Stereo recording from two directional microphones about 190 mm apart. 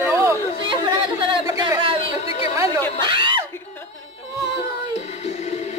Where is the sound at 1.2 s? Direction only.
25° right (ahead or behind).